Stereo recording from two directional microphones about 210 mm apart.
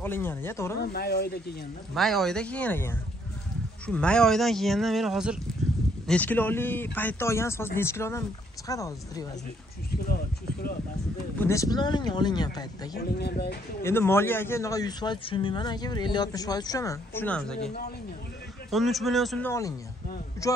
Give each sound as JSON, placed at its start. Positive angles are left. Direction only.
{"t": 0.0, "sound": "speech", "side_deg": 10}
{"t": 0.9, "sound": "speech", "side_deg": 50}
{"t": 2.0, "sound": "speech", "side_deg": 0}
{"t": 6.0, "sound": "speech", "side_deg": 5}
{"t": 9.8, "sound": "a sound", "side_deg": 45}
{"t": 11.3, "sound": "speech", "side_deg": 15}
{"t": 12.9, "sound": "speech", "side_deg": 50}
{"t": 13.8, "sound": "speech", "side_deg": 10}
{"t": 18.7, "sound": "speech", "side_deg": 0}